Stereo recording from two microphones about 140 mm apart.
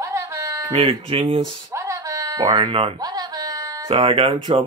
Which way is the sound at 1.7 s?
20° right (ahead or behind).